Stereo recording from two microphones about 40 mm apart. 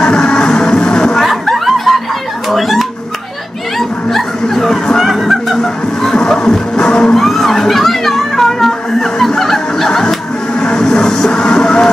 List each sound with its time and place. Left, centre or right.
0.0 s music: centre
1.2 s snicker: centre
2.5 s a sound: centre
4.1 s snicker: centre
5.0 s snicker: centre
5.6 s music: centre
7.2 s children playing: centre
9.2 s music: centre